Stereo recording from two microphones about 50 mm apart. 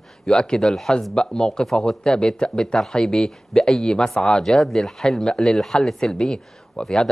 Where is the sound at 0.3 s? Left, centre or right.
Centre.